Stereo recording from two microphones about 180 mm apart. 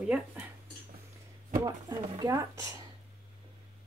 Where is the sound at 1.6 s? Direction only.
20° right (ahead or behind).